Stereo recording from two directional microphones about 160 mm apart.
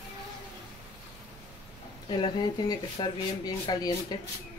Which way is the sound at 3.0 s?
25° left (ahead or behind).